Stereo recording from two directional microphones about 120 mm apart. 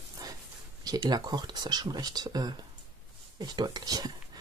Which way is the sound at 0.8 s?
35° right (ahead or behind).